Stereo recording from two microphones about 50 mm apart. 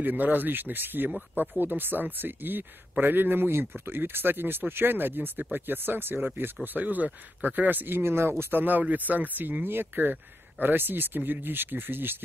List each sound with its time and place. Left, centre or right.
0.0 s speech: right